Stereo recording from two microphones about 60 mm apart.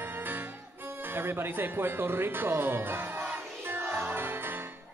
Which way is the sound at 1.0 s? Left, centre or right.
Right.